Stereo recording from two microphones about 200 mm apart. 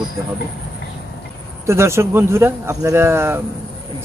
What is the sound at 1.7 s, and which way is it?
Speech, 15° right (ahead or behind).